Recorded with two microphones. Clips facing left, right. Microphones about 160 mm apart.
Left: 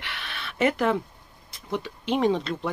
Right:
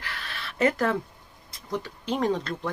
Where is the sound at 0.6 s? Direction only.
10° left (ahead or behind).